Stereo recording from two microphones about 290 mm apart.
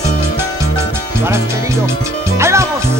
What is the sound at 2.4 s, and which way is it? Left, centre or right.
Music, centre.